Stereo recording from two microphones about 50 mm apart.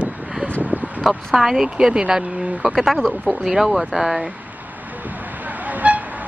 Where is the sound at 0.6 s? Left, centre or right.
Right.